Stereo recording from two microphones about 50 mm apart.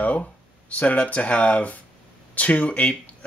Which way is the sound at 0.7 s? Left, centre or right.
Left.